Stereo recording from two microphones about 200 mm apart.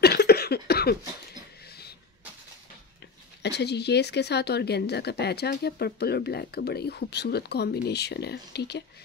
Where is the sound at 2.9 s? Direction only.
55° left (ahead or behind).